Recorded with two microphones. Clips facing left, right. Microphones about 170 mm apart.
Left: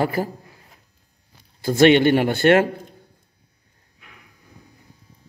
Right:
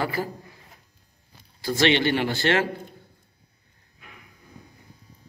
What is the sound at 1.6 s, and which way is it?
A man's voice, 50° left (ahead or behind).